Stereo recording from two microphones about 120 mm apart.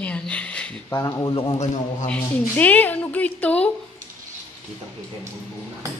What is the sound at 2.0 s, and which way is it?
A woman's voice, 10° left (ahead or behind).